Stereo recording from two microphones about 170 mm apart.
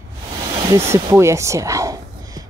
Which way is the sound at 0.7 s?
15° right (ahead or behind).